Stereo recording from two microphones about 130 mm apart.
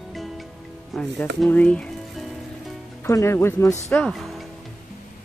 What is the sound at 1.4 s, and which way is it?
Music, 10° left (ahead or behind).